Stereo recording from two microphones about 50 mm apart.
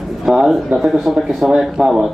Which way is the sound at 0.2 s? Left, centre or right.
Centre.